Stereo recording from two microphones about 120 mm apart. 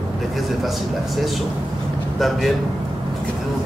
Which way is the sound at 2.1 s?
Centre (ahead or behind).